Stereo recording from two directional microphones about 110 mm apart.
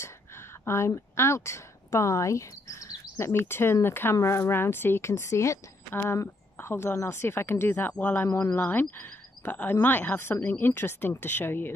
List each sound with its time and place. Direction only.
0.7 s speech: 25° left (ahead or behind)